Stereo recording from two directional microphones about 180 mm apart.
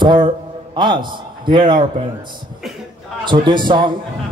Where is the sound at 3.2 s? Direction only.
25° right (ahead or behind).